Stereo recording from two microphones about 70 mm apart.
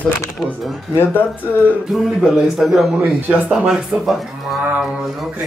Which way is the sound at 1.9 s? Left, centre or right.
Centre.